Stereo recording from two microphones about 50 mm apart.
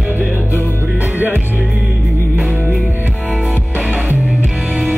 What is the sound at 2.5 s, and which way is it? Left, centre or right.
Music, right.